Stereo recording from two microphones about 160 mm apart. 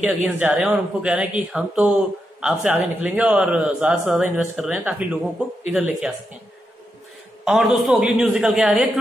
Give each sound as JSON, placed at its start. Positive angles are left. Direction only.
{"t": 0.0, "sound": "speech", "side_deg": -10}
{"t": 7.4, "sound": "a woman's voice", "side_deg": -5}